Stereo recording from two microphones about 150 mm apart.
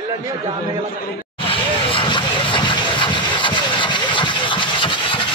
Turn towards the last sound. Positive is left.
turn(degrees=35)  # may be behind; listen again after turning